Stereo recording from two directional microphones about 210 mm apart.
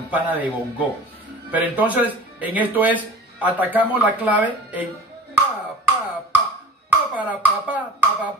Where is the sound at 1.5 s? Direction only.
5° right (ahead or behind).